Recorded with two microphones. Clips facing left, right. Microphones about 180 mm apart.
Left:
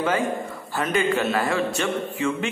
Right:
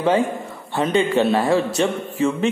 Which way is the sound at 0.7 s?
30° right (ahead or behind).